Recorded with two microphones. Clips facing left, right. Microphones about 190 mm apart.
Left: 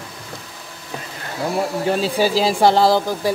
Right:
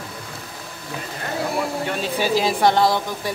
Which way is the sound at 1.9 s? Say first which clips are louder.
Left 4 dB; 35° left (ahead or behind).